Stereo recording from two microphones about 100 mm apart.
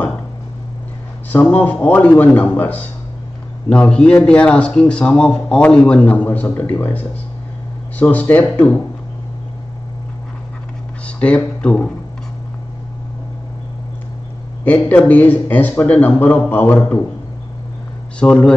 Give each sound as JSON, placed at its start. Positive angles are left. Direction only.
{"t": 1.3, "sound": "a man's voice", "side_deg": 15}
{"t": 11.1, "sound": "speech", "side_deg": 15}
{"t": 14.6, "sound": "a man's voice", "side_deg": 15}
{"t": 18.2, "sound": "a man's voice", "side_deg": 10}